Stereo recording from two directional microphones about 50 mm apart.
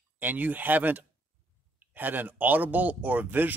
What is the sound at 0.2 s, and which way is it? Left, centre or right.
Speech, right.